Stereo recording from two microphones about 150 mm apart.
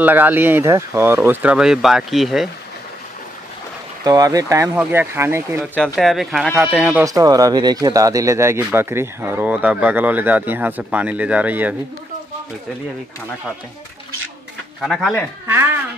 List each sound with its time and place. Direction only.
0.0 s speech: 10° right (ahead or behind)
4.0 s speech: 25° right (ahead or behind)
5.9 s speech: centre (ahead or behind)
7.1 s speech: 25° right (ahead or behind)
14.8 s speech: centre (ahead or behind)
15.4 s speech: 15° right (ahead or behind)